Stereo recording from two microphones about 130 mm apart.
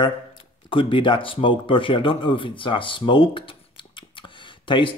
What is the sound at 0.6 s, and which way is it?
Speech, 40° left (ahead or behind).